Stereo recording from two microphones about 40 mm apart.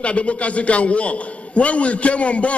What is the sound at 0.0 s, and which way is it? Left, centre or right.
A man's voice, left.